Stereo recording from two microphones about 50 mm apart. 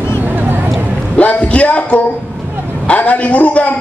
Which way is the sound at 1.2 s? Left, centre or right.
Left.